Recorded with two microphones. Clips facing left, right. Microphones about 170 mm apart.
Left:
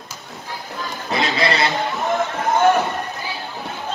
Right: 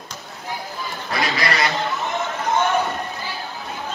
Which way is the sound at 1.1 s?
25° left (ahead or behind).